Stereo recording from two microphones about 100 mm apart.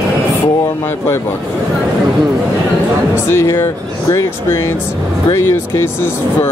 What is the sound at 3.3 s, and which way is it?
Speech, 25° left (ahead or behind).